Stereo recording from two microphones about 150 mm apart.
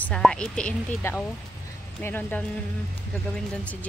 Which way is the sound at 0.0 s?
5° left (ahead or behind).